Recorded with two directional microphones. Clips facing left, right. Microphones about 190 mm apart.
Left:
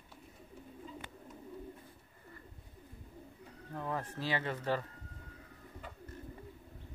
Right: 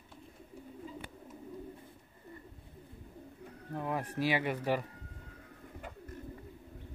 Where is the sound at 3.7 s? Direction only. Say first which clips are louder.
Right 4 dB; 15° right (ahead or behind).